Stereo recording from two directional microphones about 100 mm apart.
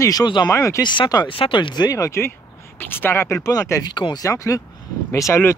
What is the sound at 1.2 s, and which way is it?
Speech, 60° left (ahead or behind).